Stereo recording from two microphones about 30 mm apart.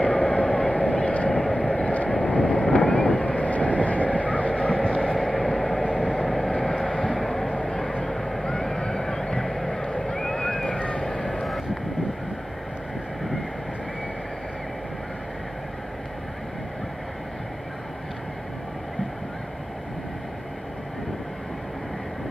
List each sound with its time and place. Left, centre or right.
0.0 s a sound: left
0.7 s vehicle: left
1.3 s vehicle: left
2.0 s vehicle: left
5.1 s vehicle: centre
10.2 s boat: centre
11.0 s vehicle: left
11.4 s vehicle: centre